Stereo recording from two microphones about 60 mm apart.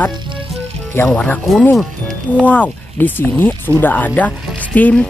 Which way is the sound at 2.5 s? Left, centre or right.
Left.